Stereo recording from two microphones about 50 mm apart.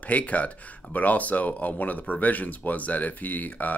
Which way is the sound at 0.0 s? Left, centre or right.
Left.